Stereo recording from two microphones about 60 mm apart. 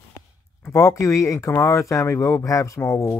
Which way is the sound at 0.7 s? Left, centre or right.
Left.